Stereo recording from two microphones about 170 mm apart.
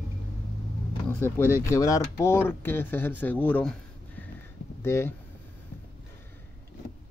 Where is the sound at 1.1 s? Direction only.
15° left (ahead or behind).